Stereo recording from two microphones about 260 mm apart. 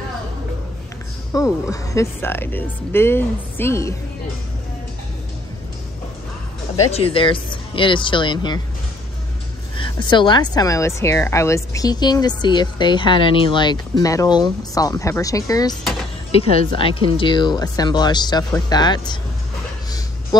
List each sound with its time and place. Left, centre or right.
1.3 s speech: centre
6.9 s speech: left
9.8 s speech: centre
15.8 s power windows: centre
16.3 s speech: left